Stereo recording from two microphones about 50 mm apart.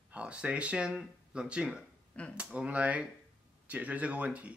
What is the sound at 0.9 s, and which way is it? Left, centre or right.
Speech, centre.